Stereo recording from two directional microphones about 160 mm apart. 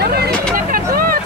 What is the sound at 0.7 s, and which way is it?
Vehicle, 65° right (ahead or behind).